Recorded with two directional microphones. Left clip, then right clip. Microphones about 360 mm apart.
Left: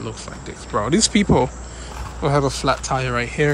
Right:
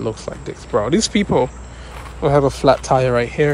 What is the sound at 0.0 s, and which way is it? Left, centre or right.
Speech, centre.